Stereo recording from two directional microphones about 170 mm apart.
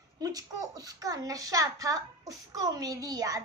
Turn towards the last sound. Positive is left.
turn(degrees=-20)  # may be behind; listen again after turning